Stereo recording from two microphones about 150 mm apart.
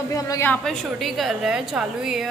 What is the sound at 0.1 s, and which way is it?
Speech, 20° left (ahead or behind).